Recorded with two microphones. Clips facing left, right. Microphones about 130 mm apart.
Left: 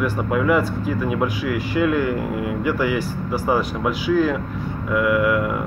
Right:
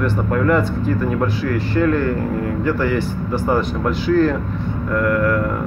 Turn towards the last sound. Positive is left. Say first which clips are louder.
# right 1 dB
turn(degrees=10)  # may be behind; listen again after turning